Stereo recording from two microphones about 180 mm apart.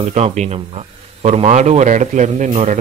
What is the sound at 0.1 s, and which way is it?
A man's voice, 40° right (ahead or behind).